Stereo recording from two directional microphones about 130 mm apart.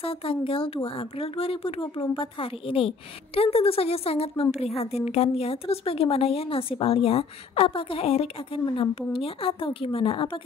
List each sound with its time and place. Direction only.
0.0 s a woman's voice: 45° left (ahead or behind)